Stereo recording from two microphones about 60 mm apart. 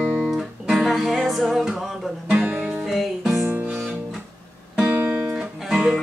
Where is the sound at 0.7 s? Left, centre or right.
Centre.